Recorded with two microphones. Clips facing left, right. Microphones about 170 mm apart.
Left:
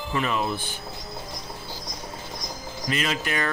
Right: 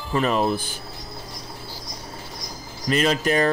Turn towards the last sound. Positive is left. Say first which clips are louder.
# right 7 dB
turn(degrees=-35)  # may be behind; listen again after turning